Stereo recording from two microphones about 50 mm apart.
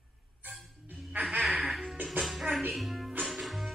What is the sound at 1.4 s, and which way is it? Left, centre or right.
Music, centre.